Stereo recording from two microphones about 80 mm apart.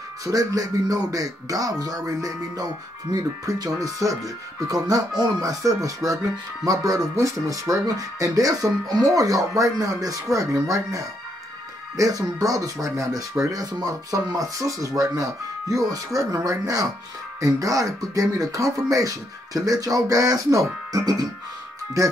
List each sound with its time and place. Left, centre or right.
0.2 s speech: right
21.0 s speech: right